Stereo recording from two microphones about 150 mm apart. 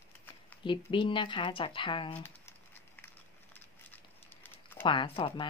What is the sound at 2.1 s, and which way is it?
Crumpling, 15° left (ahead or behind).